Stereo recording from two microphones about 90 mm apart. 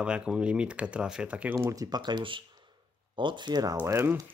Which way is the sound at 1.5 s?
40° right (ahead or behind).